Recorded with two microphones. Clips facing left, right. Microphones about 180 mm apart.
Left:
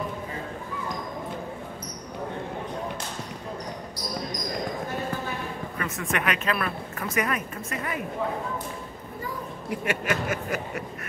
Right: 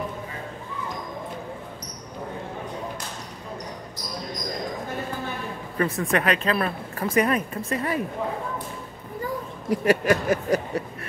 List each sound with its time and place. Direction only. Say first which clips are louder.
5.8 s speech: right 7 dB; 35° right (ahead or behind)
9.7 s speech: right 8 dB; 35° right (ahead or behind)